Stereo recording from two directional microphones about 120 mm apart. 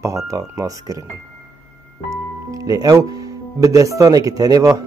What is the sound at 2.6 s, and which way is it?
Speech, 30° right (ahead or behind).